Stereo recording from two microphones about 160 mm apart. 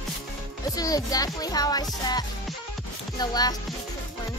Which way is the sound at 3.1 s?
25° left (ahead or behind).